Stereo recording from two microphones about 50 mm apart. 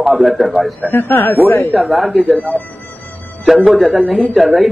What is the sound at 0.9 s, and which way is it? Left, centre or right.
Speech, left.